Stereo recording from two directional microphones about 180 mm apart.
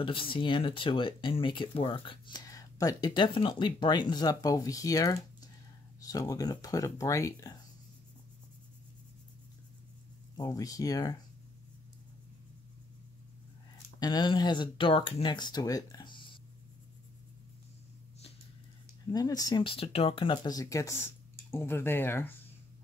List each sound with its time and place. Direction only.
0.0 s speech: 30° left (ahead or behind)
10.3 s speech: 20° left (ahead or behind)
13.9 s speech: 25° left (ahead or behind)
19.1 s speech: 20° left (ahead or behind)